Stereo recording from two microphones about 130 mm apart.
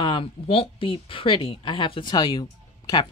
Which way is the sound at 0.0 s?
45° left (ahead or behind).